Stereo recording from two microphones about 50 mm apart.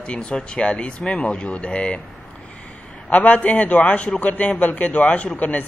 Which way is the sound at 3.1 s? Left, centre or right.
Left.